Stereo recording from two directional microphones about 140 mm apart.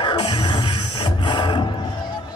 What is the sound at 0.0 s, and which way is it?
Music, 35° left (ahead or behind).